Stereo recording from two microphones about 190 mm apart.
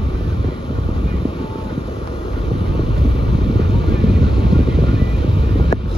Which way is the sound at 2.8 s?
25° left (ahead or behind).